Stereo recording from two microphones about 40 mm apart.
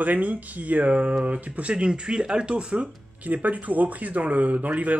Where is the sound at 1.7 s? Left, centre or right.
Right.